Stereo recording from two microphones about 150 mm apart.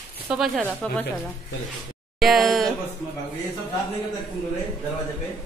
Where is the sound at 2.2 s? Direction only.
Centre (ahead or behind).